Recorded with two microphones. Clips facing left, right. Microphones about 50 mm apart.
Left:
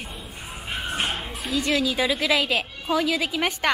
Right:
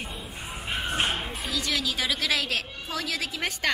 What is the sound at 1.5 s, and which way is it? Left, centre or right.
A woman's voice, left.